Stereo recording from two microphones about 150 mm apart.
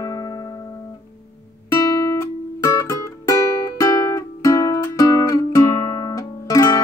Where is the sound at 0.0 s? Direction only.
25° left (ahead or behind).